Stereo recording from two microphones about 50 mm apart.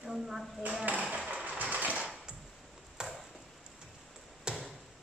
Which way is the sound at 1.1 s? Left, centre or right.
Right.